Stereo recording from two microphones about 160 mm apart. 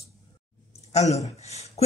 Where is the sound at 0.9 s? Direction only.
45° left (ahead or behind).